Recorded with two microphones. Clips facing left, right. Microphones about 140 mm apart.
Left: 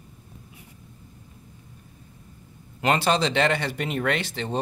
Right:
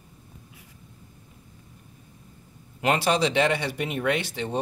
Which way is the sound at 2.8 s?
10° right (ahead or behind).